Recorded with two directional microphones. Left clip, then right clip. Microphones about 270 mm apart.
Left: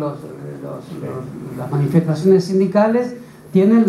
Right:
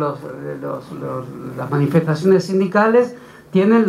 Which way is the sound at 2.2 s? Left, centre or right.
Centre.